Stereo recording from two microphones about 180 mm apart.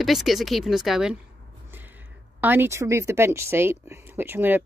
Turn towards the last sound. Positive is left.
turn(degrees=-10)  # may be behind; listen again after turning